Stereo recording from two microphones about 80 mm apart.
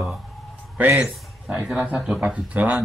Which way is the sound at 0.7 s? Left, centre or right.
Right.